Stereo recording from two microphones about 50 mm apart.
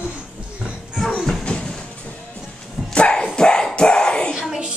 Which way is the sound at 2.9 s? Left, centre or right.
Left.